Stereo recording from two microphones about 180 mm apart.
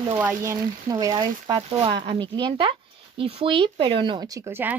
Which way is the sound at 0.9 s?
20° right (ahead or behind).